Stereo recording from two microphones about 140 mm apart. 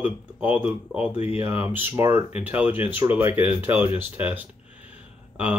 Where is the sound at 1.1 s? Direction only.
45° left (ahead or behind).